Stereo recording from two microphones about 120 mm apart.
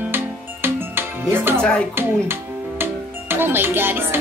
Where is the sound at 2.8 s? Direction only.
20° right (ahead or behind).